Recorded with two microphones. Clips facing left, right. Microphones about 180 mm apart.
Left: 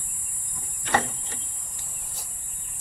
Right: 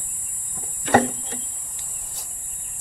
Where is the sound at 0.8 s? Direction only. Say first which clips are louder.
Right 8 dB; 60° right (ahead or behind).